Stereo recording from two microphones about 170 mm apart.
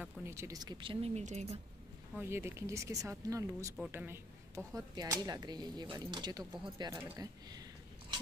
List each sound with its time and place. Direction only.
0.0 s speech: 15° right (ahead or behind); by 1.6 s 40° right (ahead or behind)
2.1 s speech: 15° right (ahead or behind)